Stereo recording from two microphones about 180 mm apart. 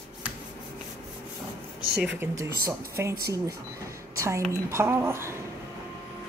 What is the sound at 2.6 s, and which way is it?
Speech, 15° right (ahead or behind).